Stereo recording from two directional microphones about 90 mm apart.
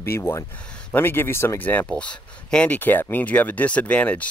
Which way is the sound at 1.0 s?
25° left (ahead or behind).